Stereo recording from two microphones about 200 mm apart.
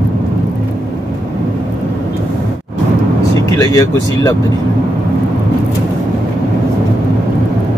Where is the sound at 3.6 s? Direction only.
20° left (ahead or behind).